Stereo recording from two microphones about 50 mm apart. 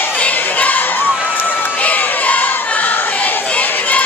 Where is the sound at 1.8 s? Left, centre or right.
Left.